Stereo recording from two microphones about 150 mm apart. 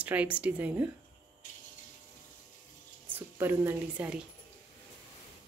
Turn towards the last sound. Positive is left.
turn(degrees=-10)  # may be behind; listen again after turning